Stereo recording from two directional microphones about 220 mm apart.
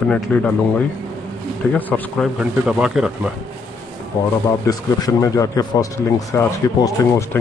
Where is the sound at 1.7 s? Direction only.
5° left (ahead or behind).